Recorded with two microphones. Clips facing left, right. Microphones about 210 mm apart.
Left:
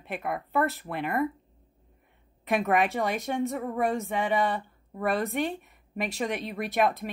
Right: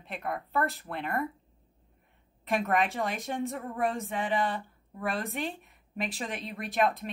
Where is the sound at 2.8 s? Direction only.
60° left (ahead or behind).